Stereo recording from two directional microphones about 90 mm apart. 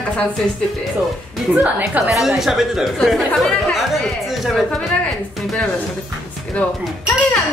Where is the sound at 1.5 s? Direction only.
15° right (ahead or behind).